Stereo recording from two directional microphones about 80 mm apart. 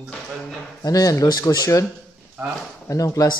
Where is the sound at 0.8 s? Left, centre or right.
Left.